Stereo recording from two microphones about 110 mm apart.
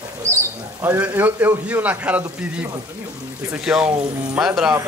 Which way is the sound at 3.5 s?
5° right (ahead or behind).